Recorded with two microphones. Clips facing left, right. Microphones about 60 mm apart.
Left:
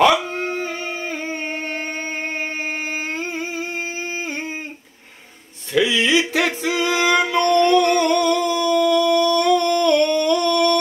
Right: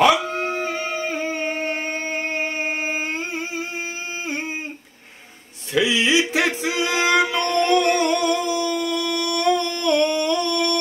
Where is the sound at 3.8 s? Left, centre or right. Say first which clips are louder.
Left 2 dB; left.